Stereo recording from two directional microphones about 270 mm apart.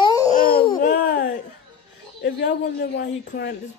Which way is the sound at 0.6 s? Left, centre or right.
Left.